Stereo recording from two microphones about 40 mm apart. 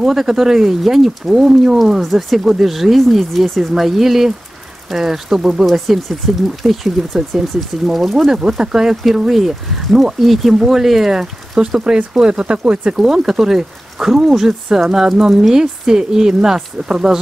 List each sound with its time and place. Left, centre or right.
0.0 s speech: centre
5.7 s speech: centre
8.5 s speech: centre; by 12.9 s right
12.9 s speech: centre